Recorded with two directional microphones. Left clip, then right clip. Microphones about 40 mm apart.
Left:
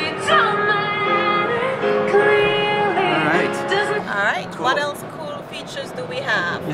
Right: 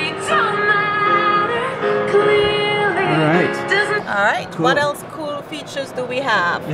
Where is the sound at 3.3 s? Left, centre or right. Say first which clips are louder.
Right 2 dB; centre.